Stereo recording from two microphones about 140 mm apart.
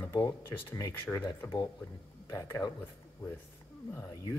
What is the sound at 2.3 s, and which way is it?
Speech, 25° left (ahead or behind).